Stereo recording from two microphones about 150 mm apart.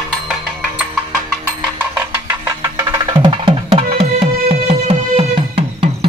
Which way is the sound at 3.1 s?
30° right (ahead or behind).